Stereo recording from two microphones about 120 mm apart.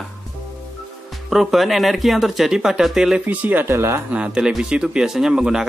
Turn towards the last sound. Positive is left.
turn(degrees=-5)  # may be behind; listen again after turning